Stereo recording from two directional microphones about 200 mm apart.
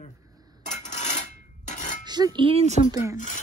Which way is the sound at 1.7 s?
40° left (ahead or behind).